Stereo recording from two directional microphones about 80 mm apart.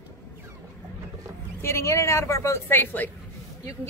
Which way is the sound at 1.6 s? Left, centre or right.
Left.